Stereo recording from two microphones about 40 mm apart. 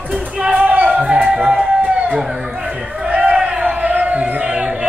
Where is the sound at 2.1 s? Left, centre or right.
Centre.